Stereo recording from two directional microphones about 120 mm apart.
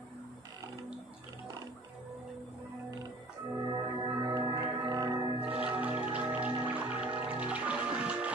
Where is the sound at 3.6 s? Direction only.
35° right (ahead or behind).